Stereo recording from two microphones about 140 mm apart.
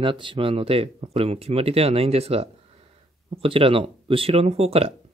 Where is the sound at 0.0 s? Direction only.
35° right (ahead or behind).